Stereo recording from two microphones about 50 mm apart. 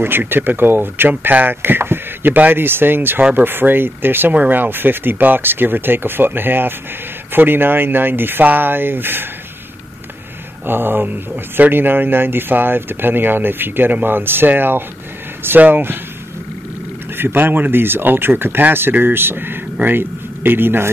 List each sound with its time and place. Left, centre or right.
0.3 s speech: right
2.3 s speech: right
2.6 s speech: right
10.6 s speech: right
17.2 s speech: right